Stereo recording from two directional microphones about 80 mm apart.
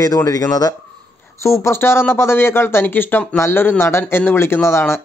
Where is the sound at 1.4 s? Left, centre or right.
Left.